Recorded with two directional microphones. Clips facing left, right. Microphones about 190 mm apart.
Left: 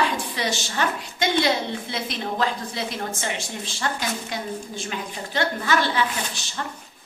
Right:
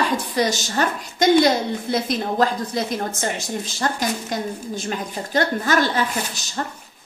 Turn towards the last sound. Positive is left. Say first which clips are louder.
# right 4 dB
turn(degrees=-40)  # may be behind; listen again after turning